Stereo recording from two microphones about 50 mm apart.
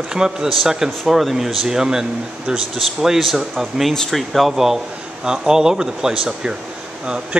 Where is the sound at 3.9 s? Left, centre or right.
Centre.